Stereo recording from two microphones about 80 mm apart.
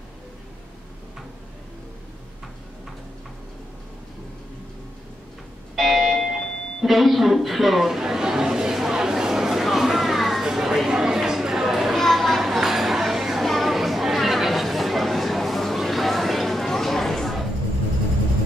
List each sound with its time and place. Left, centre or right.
5.8 s doorbell: centre